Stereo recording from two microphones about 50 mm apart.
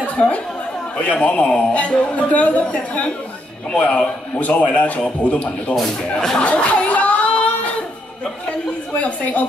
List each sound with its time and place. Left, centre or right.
0.0 s chatter: left
0.9 s speech: left
5.8 s speech: centre
6.4 s a sound: left
8.9 s speech: left